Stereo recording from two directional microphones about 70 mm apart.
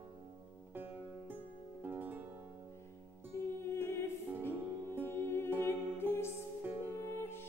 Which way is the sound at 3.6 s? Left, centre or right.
Left.